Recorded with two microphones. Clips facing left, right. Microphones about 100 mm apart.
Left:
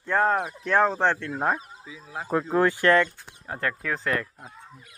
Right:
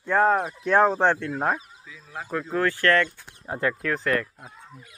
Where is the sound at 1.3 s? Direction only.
Centre (ahead or behind).